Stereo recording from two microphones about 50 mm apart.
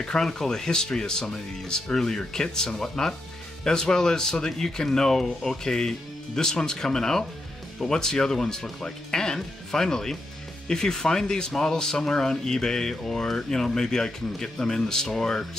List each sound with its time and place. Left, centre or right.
0.0 s speech: centre